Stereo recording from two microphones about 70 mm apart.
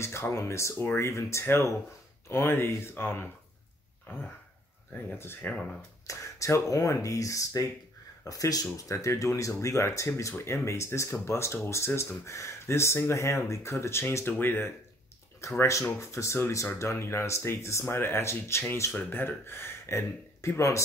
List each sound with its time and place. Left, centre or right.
0.0 s speech: left
4.9 s speech: left
6.0 s speech: left
15.4 s speech: left